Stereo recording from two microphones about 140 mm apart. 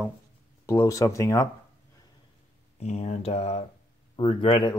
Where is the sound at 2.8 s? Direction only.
55° left (ahead or behind).